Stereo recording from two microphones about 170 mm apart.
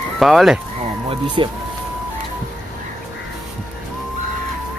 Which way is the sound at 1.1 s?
30° right (ahead or behind).